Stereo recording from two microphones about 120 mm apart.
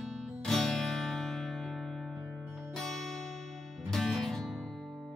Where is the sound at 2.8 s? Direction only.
Centre (ahead or behind).